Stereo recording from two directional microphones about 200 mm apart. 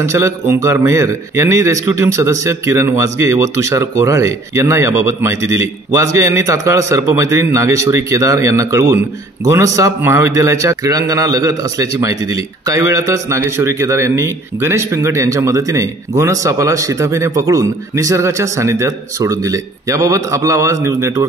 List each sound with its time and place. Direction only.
0.0 s a man's voice: 15° right (ahead or behind)